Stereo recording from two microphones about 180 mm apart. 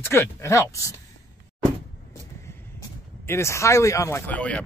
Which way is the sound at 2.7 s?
15° left (ahead or behind).